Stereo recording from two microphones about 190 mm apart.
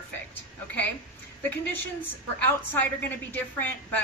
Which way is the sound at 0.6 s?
10° left (ahead or behind).